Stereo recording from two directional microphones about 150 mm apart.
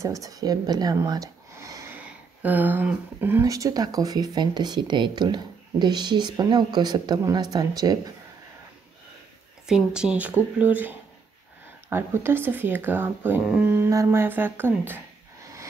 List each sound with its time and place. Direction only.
0.0 s speech: 20° right (ahead or behind)
9.7 s speech: 5° right (ahead or behind)